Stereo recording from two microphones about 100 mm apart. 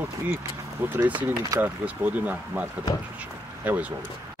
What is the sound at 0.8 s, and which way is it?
Speech, 20° right (ahead or behind).